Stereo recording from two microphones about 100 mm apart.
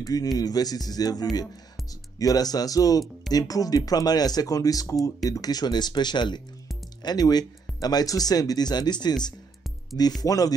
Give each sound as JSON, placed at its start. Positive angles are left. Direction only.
{"t": 0.0, "sound": "speech", "side_deg": 35}